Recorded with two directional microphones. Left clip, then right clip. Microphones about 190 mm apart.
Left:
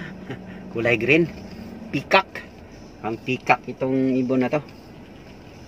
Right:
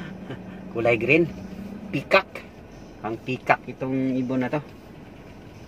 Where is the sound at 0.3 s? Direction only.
20° left (ahead or behind).